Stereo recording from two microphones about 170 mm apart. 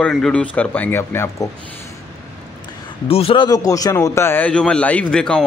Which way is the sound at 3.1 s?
35° left (ahead or behind).